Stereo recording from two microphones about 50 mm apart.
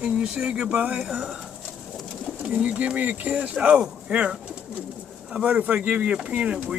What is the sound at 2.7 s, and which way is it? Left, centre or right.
Speech, right.